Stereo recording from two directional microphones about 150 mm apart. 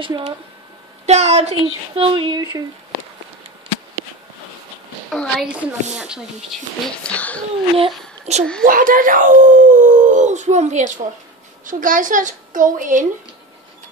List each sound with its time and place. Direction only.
1.0 s a woman's voice: 45° right (ahead or behind)
5.1 s a woman's voice: 5° left (ahead or behind)
7.0 s speech: 10° left (ahead or behind)
7.7 s a child's voice: 45° right (ahead or behind)
8.6 s speech: 65° right (ahead or behind); by 10.8 s 50° right (ahead or behind)
11.6 s a woman's voice: 65° right (ahead or behind)